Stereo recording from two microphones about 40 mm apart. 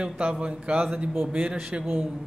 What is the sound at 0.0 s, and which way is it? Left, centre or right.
A man's voice, right.